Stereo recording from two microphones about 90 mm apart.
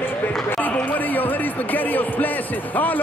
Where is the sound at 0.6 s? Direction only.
20° left (ahead or behind).